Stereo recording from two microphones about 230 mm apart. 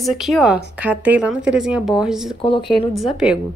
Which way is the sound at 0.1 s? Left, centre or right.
Centre.